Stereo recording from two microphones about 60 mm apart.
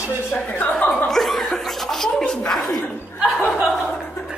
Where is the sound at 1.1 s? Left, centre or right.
Centre.